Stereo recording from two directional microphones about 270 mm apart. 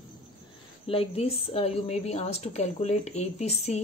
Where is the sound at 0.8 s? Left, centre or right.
Left.